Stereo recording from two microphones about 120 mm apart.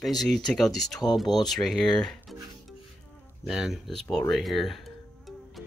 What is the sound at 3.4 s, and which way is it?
Speech, 5° right (ahead or behind).